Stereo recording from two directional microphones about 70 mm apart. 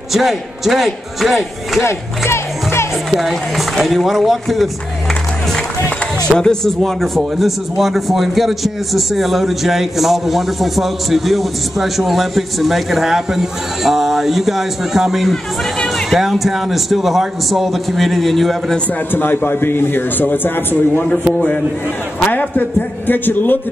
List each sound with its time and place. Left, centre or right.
0.1 s a man's voice: centre
1.8 s music: left
3.1 s a man's voice: centre
6.3 s a man's voice: centre
19.1 s a man's voice: left